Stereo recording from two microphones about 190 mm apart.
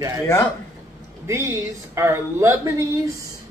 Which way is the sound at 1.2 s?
15° right (ahead or behind).